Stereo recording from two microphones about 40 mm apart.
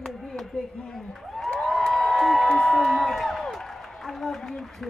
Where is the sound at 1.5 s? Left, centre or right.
Centre.